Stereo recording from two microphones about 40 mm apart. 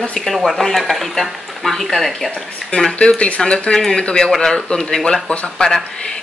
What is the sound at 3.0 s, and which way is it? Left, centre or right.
Speech, left.